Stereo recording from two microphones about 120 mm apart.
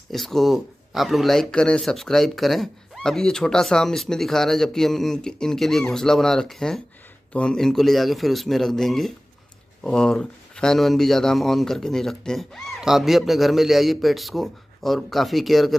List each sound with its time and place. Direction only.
0.1 s speech: centre (ahead or behind)